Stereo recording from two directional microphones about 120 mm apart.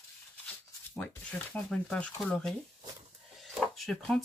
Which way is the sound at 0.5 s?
10° left (ahead or behind).